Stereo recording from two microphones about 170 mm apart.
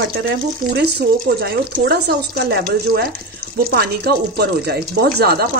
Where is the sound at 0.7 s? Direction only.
70° right (ahead or behind).